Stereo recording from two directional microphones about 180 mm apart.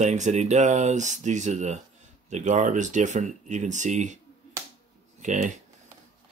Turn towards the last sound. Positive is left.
turn(degrees=-45)  # may be behind; listen again after turning